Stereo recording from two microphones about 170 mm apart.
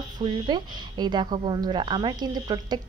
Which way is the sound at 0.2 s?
25° right (ahead or behind).